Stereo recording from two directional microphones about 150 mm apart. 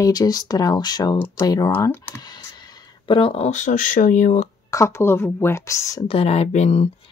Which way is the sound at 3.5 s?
55° left (ahead or behind).